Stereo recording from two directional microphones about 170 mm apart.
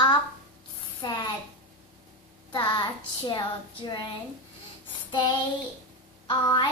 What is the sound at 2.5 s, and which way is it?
A child's voice, 25° left (ahead or behind).